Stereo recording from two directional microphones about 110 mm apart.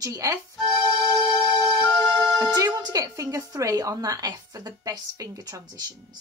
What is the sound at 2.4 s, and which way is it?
A woman's voice, 30° right (ahead or behind).